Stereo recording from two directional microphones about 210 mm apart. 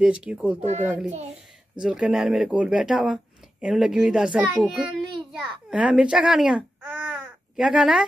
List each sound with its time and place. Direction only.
0.0 s speech: 5° right (ahead or behind)
0.6 s a child's voice: 35° right (ahead or behind)
1.8 s speech: 5° right (ahead or behind)
5.3 s babbling: centre (ahead or behind)